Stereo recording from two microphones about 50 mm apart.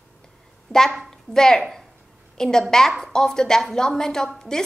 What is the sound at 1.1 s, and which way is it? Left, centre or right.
A woman's voice, centre.